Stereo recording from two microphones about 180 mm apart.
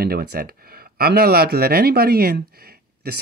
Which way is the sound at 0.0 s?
60° right (ahead or behind).